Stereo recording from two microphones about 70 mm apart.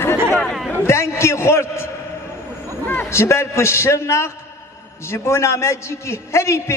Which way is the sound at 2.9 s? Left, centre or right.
Left.